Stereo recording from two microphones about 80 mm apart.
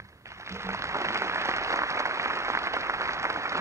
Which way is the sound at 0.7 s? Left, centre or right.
Right.